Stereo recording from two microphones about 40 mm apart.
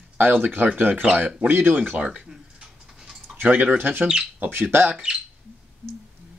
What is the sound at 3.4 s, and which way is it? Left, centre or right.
Speech, right.